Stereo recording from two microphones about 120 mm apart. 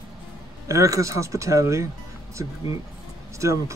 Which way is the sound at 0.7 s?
25° right (ahead or behind).